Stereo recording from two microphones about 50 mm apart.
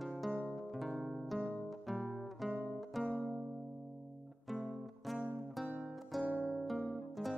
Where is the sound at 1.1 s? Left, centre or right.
Centre.